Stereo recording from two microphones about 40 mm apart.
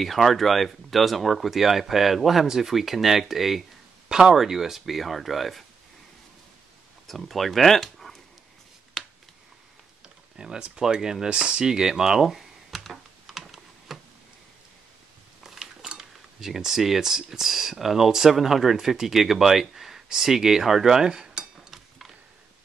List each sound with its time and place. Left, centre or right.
0.0 s speech: centre
4.1 s speech: centre
7.1 s speech: centre
9.0 s a sound: centre
10.0 s computer keyboard: centre
10.8 s speech: centre
11.9 s computer keyboard: centre
15.4 s a sound: centre
16.0 s speech: centre
21.6 s a sound: centre